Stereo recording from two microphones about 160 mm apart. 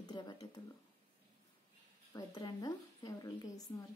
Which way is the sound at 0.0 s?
25° left (ahead or behind).